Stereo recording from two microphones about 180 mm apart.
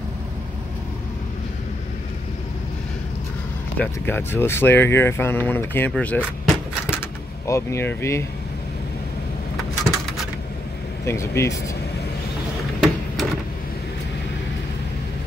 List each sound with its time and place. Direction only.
3.7 s speech: 10° left (ahead or behind)
11.1 s speech: 15° left (ahead or behind)
12.8 s a sound: centre (ahead or behind)